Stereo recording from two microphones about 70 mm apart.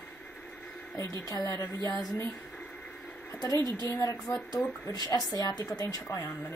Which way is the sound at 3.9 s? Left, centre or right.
Left.